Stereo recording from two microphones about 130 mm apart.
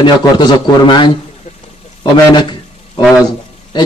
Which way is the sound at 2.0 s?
35° left (ahead or behind).